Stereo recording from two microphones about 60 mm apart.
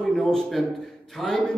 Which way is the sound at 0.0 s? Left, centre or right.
Centre.